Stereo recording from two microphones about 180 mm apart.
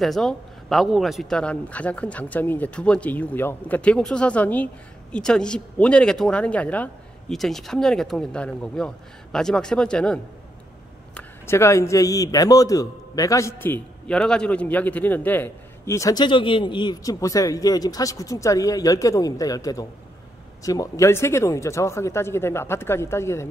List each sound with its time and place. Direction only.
0.0 s a man's voice: centre (ahead or behind)